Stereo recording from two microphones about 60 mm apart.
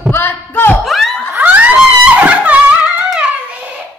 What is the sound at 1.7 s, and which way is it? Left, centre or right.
Music, right.